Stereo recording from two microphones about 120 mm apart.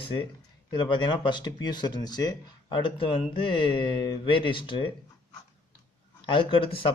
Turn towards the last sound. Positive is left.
turn(degrees=45)  # may be behind; listen again after turning